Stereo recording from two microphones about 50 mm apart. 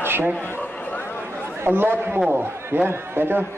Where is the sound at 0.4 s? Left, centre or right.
Left.